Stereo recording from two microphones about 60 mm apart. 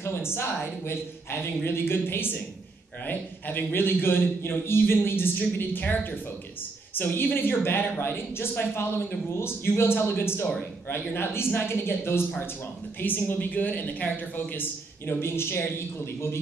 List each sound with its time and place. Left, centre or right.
0.3 s a man's voice: left
7.0 s a man's voice: left
13.0 s a woman's voice: left